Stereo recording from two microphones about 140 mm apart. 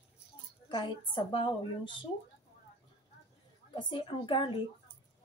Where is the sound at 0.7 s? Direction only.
35° left (ahead or behind).